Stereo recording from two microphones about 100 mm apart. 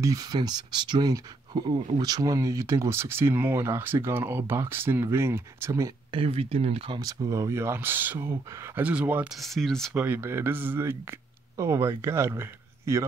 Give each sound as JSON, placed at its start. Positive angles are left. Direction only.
{"t": 0.0, "sound": "speech", "side_deg": -35}
{"t": 6.1, "sound": "speech", "side_deg": -70}
{"t": 7.0, "sound": "speech", "side_deg": -40}
{"t": 9.3, "sound": "speech", "side_deg": 0}
{"t": 9.9, "sound": "speech", "side_deg": -20}